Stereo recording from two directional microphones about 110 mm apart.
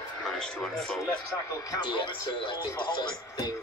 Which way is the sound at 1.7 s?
45° left (ahead or behind).